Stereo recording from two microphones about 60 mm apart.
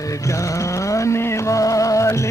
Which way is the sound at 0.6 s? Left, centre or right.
Left.